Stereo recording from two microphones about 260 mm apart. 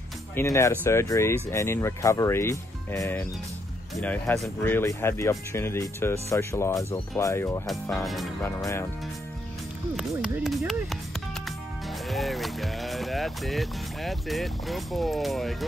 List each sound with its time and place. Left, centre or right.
0.4 s speech: centre
8.0 s speech: centre
9.9 s a sound: centre
12.1 s speech: centre